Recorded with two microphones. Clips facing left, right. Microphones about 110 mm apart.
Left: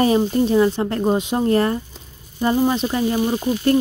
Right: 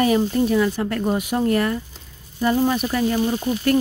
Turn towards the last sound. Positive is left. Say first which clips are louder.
# left 2 dB
turn(degrees=25)  # may be behind; listen again after turning